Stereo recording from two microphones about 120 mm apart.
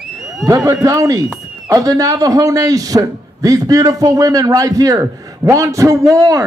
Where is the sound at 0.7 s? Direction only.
30° right (ahead or behind).